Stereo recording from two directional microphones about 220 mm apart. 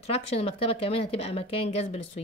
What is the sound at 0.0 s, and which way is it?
Speech, 25° left (ahead or behind).